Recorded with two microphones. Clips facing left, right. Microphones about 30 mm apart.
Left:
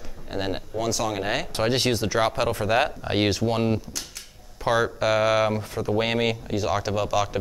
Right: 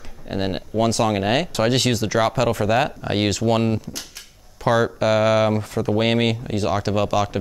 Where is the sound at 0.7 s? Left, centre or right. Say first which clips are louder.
Right 8 dB; right.